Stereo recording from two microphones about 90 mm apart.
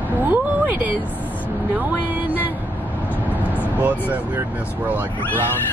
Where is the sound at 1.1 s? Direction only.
20° right (ahead or behind).